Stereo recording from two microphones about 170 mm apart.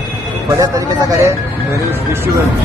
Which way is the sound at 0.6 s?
20° right (ahead or behind).